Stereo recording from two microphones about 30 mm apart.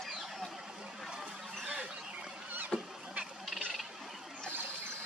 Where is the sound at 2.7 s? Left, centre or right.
Left.